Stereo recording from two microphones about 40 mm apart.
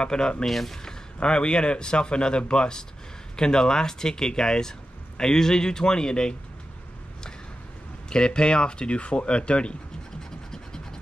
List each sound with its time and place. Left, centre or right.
0.0 s a man's voice: left
0.5 s speech: centre
0.8 s a man's voice: left
8.1 s a man's voice: left